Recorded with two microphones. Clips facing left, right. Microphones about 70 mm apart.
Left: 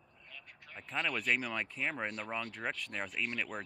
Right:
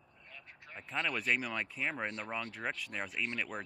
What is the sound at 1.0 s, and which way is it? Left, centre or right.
Speech, centre.